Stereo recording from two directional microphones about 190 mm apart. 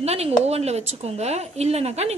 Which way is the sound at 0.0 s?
35° right (ahead or behind).